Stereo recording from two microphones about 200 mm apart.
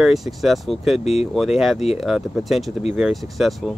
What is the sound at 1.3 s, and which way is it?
Speech, centre (ahead or behind).